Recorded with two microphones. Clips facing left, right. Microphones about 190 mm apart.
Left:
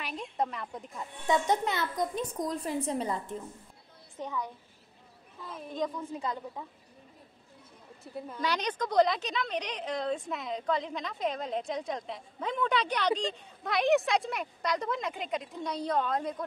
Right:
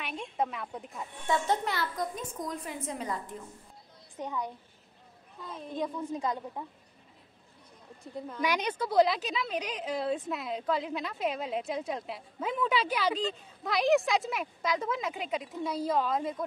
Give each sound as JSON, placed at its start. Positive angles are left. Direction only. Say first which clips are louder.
{"t": 0.0, "sound": "a woman's voice", "louder": "even", "side_deg": 0}
{"t": 1.2, "sound": "a child's voice", "louder": "left 2 dB", "side_deg": 20}
{"t": 2.3, "sound": "a woman's voice", "louder": "left 5 dB", "side_deg": 35}
{"t": 4.2, "sound": "a woman's voice", "louder": "right 1 dB", "side_deg": -10}
{"t": 5.4, "sound": "a woman's voice", "louder": "right 1 dB", "side_deg": 5}
{"t": 5.8, "sound": "a woman's voice", "louder": "right 1 dB", "side_deg": -15}
{"t": 8.4, "sound": "a woman's voice", "louder": "right 1 dB", "side_deg": -10}